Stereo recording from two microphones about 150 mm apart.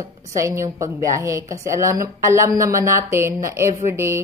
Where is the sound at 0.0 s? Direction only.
20° right (ahead or behind).